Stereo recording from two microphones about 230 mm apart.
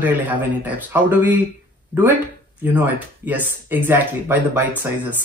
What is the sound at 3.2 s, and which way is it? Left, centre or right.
Speech, centre.